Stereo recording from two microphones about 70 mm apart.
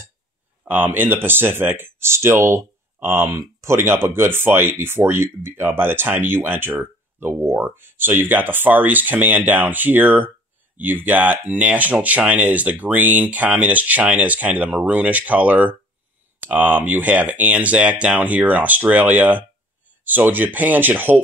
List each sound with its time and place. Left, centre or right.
0.7 s speech: right